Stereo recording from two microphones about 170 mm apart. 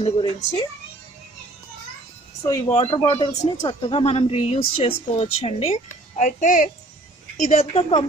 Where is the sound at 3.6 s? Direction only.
30° left (ahead or behind); by 6.7 s 50° left (ahead or behind).